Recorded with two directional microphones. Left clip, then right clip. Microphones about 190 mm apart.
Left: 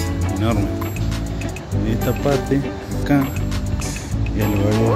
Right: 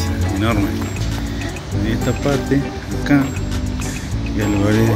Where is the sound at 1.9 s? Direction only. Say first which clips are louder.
Even; 20° left (ahead or behind).